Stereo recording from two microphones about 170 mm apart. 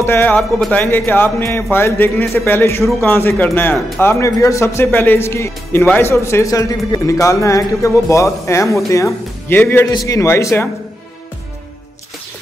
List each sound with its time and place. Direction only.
0.0 s speech: 10° left (ahead or behind)